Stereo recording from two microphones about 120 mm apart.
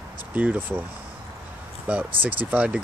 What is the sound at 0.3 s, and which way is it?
Speech, 15° right (ahead or behind).